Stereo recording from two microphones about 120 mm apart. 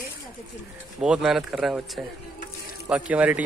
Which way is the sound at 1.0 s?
5° right (ahead or behind).